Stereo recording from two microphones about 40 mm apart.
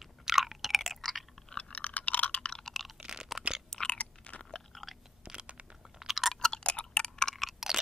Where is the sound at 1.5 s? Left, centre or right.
Left.